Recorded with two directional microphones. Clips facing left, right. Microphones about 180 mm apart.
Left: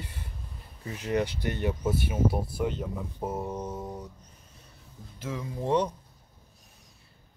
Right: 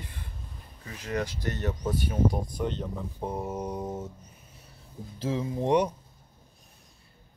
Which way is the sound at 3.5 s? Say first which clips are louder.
Right 2 dB; 15° right (ahead or behind).